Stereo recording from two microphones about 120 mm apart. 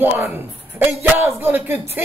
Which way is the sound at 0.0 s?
15° right (ahead or behind).